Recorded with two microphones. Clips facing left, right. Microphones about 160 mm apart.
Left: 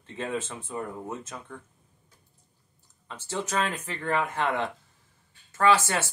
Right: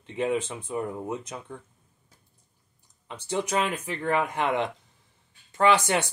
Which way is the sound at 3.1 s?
15° right (ahead or behind).